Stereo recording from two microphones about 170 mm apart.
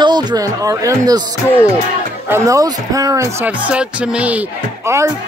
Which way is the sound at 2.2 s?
15° right (ahead or behind).